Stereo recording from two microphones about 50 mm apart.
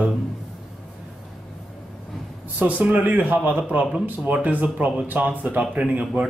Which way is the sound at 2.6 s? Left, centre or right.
Right.